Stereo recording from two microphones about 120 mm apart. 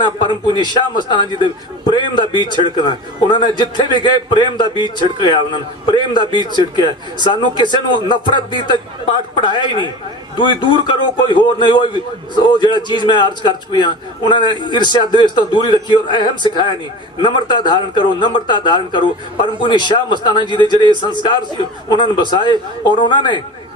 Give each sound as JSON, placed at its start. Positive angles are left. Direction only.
{"t": 0.0, "sound": "a man's voice", "side_deg": 40}